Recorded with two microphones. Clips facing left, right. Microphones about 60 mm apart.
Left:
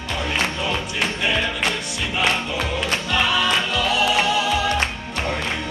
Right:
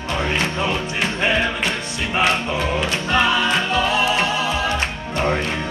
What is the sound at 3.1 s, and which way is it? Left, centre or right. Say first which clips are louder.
Music: right 3 dB; right.